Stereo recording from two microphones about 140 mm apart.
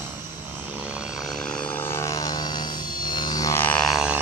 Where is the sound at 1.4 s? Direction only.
10° left (ahead or behind); by 3.6 s 25° left (ahead or behind).